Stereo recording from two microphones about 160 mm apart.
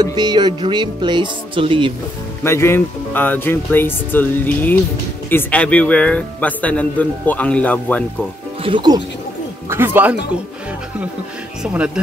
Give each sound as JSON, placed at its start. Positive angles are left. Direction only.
{"t": 0.0, "sound": "speech", "side_deg": -25}
{"t": 2.4, "sound": "speech", "side_deg": 15}
{"t": 8.6, "sound": "speech", "side_deg": -30}
{"t": 9.7, "sound": "speech", "side_deg": -15}
{"t": 11.7, "sound": "speech", "side_deg": -5}